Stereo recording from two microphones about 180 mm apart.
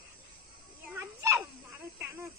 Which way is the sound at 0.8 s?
10° right (ahead or behind).